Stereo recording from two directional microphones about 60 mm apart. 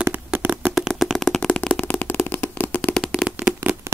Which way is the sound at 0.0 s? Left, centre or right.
Right.